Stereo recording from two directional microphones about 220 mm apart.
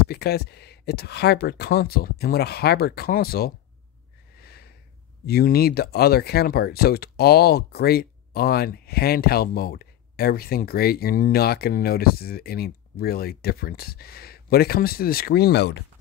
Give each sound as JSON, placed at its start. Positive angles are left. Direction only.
{"t": 0.0, "sound": "speech", "side_deg": 45}
{"t": 4.4, "sound": "a sound", "side_deg": 45}
{"t": 5.2, "sound": "speech", "side_deg": 45}